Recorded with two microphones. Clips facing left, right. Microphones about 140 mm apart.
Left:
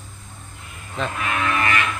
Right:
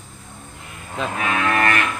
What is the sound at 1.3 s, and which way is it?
Livestock, 60° right (ahead or behind).